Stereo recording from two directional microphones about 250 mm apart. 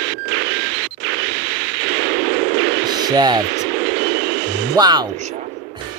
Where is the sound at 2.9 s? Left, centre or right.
Centre.